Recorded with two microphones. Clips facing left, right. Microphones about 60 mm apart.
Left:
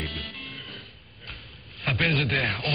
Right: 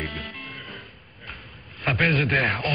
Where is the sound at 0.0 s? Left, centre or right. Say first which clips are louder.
Right 3 dB; right.